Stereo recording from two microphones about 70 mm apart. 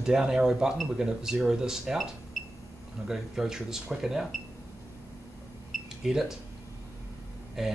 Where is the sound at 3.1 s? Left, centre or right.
Centre.